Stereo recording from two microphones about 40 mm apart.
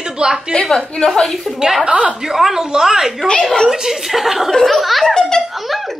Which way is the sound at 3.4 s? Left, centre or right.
Centre.